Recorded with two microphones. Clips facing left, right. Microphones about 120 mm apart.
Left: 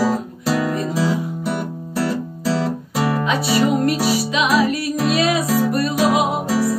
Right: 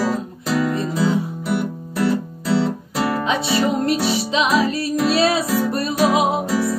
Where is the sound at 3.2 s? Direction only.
25° right (ahead or behind).